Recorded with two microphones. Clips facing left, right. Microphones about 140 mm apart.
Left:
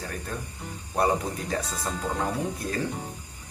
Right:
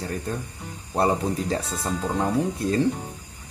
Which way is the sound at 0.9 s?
25° right (ahead or behind).